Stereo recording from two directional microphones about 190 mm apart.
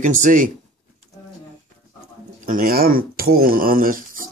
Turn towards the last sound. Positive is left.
turn(degrees=-45)  # may be behind; listen again after turning